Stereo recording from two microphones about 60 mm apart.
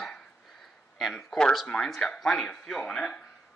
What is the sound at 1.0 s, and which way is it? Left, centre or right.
Speech, centre.